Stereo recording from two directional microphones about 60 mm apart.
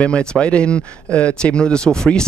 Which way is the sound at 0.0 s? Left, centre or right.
Centre.